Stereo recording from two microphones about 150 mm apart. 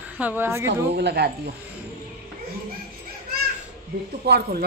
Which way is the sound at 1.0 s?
90° right.